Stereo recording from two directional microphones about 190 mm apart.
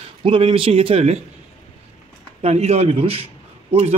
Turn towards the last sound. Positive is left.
turn(degrees=-30)  # may be behind; listen again after turning